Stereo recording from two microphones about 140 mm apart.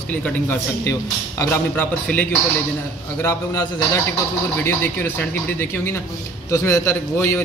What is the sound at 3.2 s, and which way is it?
A man's voice, 20° left (ahead or behind).